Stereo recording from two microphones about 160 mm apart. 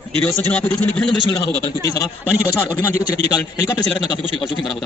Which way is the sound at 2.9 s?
20° left (ahead or behind).